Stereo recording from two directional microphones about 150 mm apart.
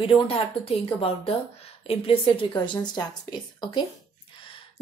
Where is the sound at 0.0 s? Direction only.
35° left (ahead or behind).